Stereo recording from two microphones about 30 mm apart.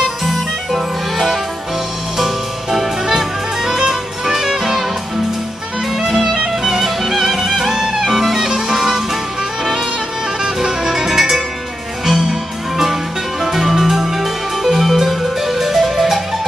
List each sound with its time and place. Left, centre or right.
0.2 s music: centre
5.9 s music: centre
10.4 s music: right